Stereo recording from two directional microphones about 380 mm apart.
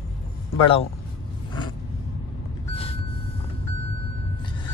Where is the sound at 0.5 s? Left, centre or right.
Centre.